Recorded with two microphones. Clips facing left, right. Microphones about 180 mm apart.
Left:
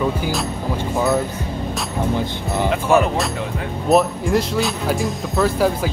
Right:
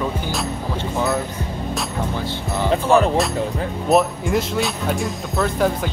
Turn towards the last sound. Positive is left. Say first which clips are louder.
# left 2 dB
turn(degrees=0)  # may be behind; listen again after turning